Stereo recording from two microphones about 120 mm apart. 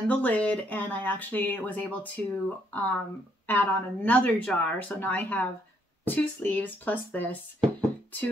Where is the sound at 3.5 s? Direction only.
15° left (ahead or behind).